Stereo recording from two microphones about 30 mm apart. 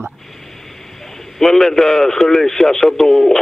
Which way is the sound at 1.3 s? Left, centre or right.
Centre.